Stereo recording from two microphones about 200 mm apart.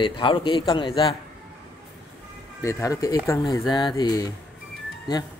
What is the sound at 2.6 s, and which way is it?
A man's voice, 15° left (ahead or behind).